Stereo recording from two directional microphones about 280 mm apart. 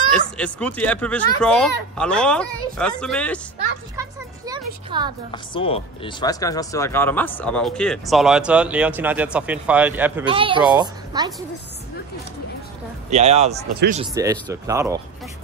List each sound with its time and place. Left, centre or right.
0.4 s speech: centre
3.9 s a sound: centre
5.3 s speech: centre
10.2 s speech: centre
13.1 s speech: right
14.1 s speech: centre